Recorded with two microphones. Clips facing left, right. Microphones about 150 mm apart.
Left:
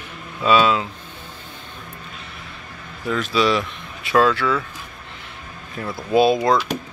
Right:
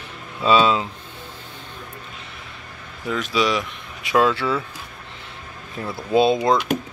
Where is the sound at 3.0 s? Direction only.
15° right (ahead or behind).